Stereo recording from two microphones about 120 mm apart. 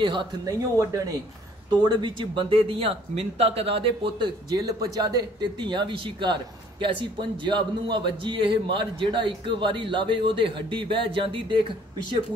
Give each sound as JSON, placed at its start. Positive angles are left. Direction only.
{"t": 0.0, "sound": "speech", "side_deg": -40}
{"t": 0.5, "sound": "speech", "side_deg": -25}
{"t": 1.7, "sound": "speech", "side_deg": -35}